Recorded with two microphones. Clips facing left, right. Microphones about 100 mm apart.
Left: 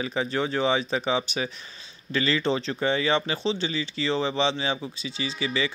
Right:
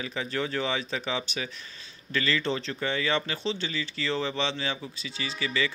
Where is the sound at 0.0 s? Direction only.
30° left (ahead or behind).